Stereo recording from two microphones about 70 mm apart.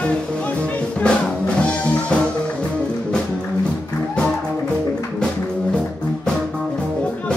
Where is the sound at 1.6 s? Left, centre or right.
Centre.